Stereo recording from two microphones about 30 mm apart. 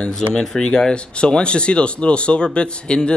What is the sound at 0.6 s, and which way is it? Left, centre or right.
Speech, left.